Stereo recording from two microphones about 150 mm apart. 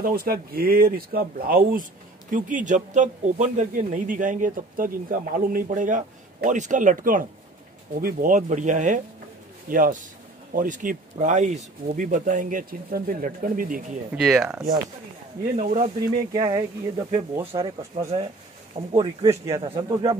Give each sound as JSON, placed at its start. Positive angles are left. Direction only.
{"t": 0.0, "sound": "a man's voice", "side_deg": -80}
{"t": 14.1, "sound": "speech", "side_deg": -5}
{"t": 15.5, "sound": "speech", "side_deg": -50}
{"t": 16.2, "sound": "speech", "side_deg": -25}
{"t": 17.5, "sound": "speech", "side_deg": -40}